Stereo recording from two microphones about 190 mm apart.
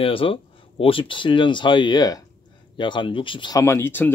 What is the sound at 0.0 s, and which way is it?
Speech, 30° left (ahead or behind).